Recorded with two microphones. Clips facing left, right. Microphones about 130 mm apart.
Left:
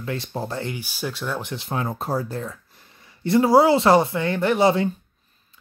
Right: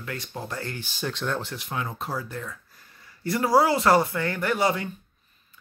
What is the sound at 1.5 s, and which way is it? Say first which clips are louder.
Speech: left 5 dB; 30° left (ahead or behind).